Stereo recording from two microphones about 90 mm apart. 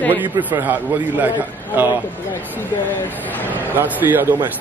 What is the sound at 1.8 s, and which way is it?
Speech, 20° right (ahead or behind).